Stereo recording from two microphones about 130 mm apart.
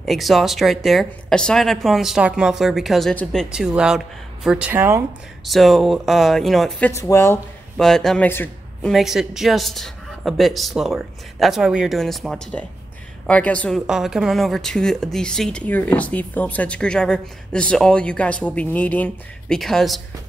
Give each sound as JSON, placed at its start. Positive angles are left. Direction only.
{"t": 0.0, "sound": "a woman's voice", "side_deg": 0}
{"t": 5.4, "sound": "a woman's voice", "side_deg": 0}
{"t": 6.9, "sound": "speech", "side_deg": 20}
{"t": 7.7, "sound": "a woman's voice", "side_deg": 5}
{"t": 19.6, "sound": "a woman's voice", "side_deg": 0}